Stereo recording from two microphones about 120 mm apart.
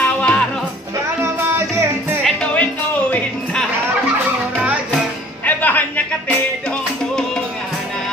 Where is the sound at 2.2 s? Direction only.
10° left (ahead or behind).